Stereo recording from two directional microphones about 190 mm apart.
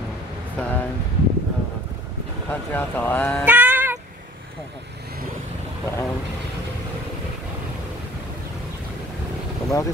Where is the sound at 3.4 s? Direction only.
10° right (ahead or behind).